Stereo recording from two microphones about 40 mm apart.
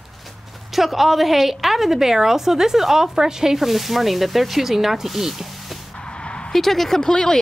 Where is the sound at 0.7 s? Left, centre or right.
Centre.